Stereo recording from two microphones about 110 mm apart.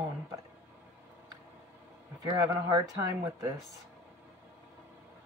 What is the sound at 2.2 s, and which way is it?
Speech, 30° right (ahead or behind).